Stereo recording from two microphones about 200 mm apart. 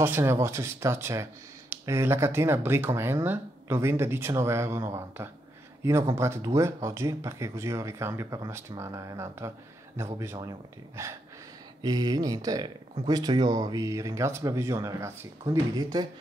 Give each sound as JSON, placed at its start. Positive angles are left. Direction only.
{"t": 0.0, "sound": "speech", "side_deg": -10}
{"t": 11.8, "sound": "speech", "side_deg": -20}